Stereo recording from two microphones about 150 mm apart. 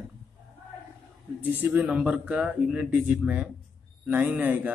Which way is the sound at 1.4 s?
10° right (ahead or behind).